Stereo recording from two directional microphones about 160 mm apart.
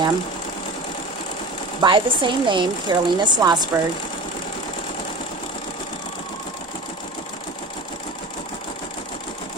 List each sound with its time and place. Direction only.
1.8 s a woman's voice: 30° right (ahead or behind)